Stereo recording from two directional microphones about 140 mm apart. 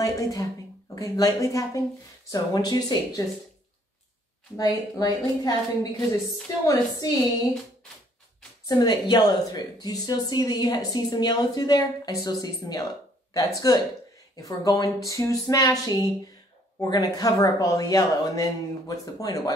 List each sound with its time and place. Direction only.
0.0 s a woman's voice: 25° left (ahead or behind)
4.6 s speech: 25° left (ahead or behind)
6.6 s speech: 25° left (ahead or behind)
8.6 s speech: 30° left (ahead or behind)